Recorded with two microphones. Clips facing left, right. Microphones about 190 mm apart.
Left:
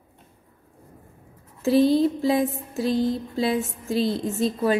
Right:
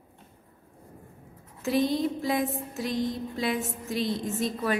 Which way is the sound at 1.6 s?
30° left (ahead or behind).